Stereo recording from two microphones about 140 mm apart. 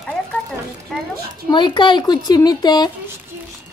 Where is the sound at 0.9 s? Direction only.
Centre (ahead or behind).